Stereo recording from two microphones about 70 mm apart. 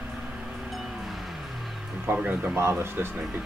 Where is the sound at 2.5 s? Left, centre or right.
Right.